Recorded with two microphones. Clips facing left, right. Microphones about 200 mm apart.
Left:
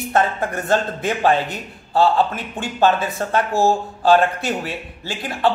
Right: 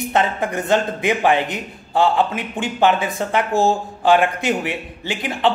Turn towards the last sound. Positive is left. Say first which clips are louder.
# right 1 dB
turn(degrees=-20)  # may be behind; listen again after turning